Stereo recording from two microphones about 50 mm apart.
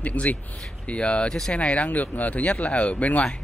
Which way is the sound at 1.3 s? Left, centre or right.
Centre.